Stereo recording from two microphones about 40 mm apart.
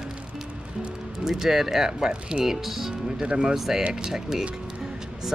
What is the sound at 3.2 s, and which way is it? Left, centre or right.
Speech, right.